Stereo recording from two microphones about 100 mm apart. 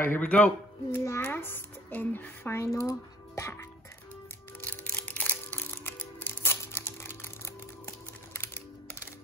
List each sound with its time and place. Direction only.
0.0 s a man's voice: 20° left (ahead or behind)
4.6 s music: 15° left (ahead or behind)